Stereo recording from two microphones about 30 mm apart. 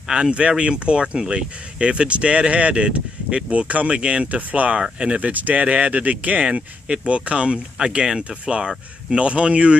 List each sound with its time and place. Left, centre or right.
0.3 s speech: right
3.9 s speech: right
4.3 s speech: right
4.9 s speech: right
5.2 s speech: right
6.4 s speech: right
9.2 s speech: right